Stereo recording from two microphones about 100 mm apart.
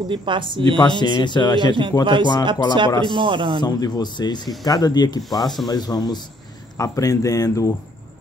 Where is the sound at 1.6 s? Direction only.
55° right (ahead or behind).